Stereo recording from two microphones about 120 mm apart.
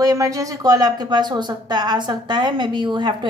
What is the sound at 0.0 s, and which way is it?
A woman's voice, 30° right (ahead or behind).